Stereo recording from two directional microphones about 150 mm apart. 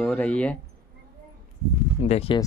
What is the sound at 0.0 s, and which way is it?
Speech, 10° left (ahead or behind).